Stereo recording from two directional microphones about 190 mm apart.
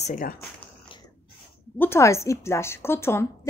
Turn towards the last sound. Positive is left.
turn(degrees=15)  # may be behind; listen again after turning